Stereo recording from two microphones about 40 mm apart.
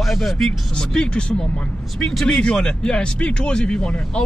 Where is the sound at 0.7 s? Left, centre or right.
Left.